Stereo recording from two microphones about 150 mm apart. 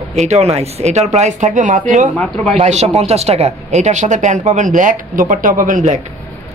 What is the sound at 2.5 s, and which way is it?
Speech, 45° right (ahead or behind).